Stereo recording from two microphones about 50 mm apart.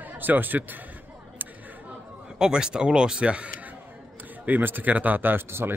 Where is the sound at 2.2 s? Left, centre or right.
Centre.